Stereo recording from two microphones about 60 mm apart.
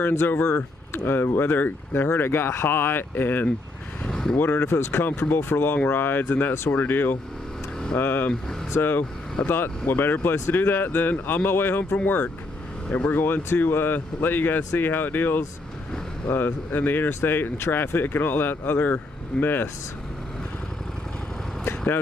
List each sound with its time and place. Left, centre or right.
0.0 s speech: left
4.1 s vehicle: centre
4.4 s speech: left